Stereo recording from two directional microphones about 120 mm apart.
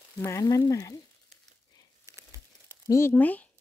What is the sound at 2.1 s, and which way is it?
Crumpling, 25° right (ahead or behind).